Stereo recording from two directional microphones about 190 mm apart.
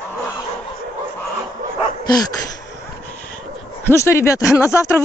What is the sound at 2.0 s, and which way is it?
Dog, 20° left (ahead or behind).